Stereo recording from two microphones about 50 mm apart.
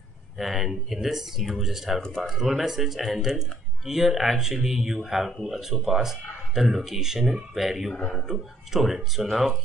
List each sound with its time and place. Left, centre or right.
0.4 s speech: centre
2.0 s speech: centre
2.2 s speech: centre